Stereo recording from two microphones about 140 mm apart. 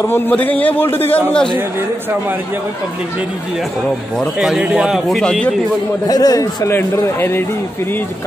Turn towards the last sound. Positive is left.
turn(degrees=15)  # may be behind; listen again after turning